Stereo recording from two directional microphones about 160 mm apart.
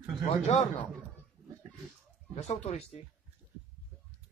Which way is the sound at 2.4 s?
40° left (ahead or behind).